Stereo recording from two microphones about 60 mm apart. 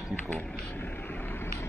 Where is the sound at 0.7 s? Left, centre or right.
Left.